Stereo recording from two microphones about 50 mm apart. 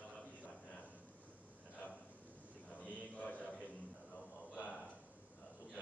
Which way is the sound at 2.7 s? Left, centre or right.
Left.